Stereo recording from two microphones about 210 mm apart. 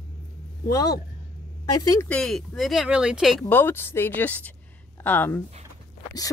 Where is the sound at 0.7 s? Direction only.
15° left (ahead or behind).